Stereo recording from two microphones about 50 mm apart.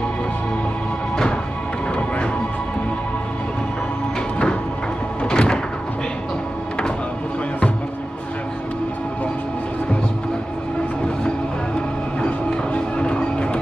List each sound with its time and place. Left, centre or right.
5.2 s door: centre
12.4 s music: left